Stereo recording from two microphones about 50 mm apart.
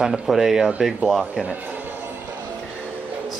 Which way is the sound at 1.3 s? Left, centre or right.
Right.